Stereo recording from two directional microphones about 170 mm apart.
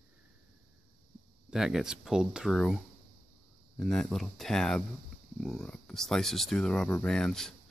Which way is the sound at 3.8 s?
Centre (ahead or behind).